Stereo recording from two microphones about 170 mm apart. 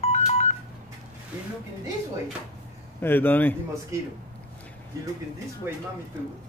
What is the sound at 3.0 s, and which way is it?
Speech, 10° left (ahead or behind).